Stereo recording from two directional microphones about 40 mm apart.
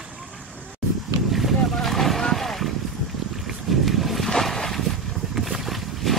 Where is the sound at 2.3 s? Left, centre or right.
Centre.